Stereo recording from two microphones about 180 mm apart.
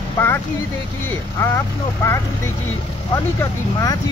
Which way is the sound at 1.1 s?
15° left (ahead or behind).